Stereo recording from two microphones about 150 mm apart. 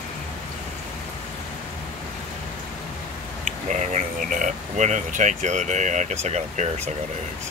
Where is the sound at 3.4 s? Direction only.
55° right (ahead or behind).